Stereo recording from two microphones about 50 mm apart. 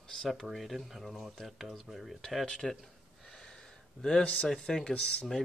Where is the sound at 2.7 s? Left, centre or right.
Centre.